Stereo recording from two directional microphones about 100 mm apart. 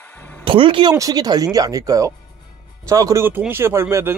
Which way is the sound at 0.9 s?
40° right (ahead or behind).